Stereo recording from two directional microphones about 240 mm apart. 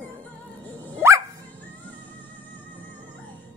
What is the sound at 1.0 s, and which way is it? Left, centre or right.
Dog, centre.